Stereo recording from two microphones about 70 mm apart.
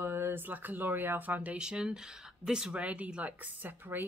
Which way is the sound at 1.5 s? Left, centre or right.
Centre.